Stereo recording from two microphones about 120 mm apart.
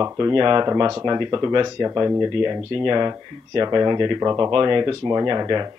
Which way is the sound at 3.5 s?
30° right (ahead or behind).